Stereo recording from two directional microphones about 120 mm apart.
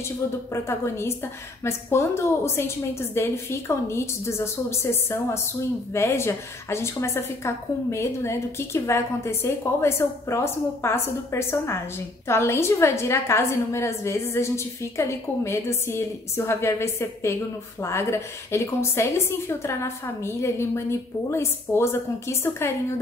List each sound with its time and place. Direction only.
0.5 s a woman's voice: 20° left (ahead or behind)